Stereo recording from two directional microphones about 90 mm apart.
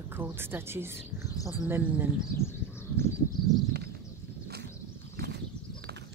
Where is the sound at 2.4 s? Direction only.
30° left (ahead or behind).